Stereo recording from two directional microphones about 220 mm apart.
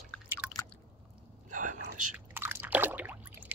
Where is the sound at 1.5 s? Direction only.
35° right (ahead or behind).